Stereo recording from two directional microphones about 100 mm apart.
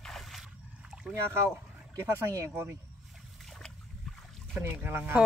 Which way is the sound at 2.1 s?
25° right (ahead or behind).